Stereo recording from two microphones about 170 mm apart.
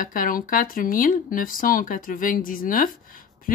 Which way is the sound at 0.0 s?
55° left (ahead or behind).